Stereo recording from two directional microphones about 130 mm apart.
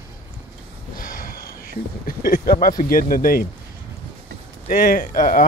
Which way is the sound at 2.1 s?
90° left.